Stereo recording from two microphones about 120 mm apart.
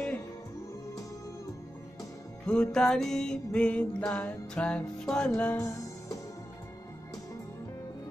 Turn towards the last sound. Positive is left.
turn(degrees=25)  # may be behind; listen again after turning